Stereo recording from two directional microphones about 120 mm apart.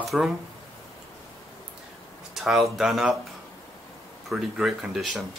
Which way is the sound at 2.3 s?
Centre (ahead or behind).